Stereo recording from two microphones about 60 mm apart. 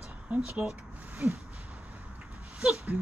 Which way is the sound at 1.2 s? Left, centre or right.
Right.